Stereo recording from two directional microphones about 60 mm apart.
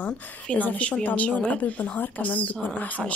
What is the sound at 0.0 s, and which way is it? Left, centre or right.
A woman's voice, left.